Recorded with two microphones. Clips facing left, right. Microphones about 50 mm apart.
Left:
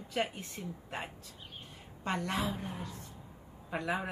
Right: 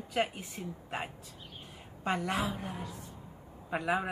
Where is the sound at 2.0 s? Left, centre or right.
Centre.